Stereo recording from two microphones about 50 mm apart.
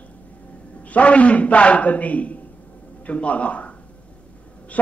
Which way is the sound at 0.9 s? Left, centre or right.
Left.